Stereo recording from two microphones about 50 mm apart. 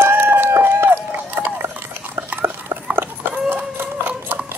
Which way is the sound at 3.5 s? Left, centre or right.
Right.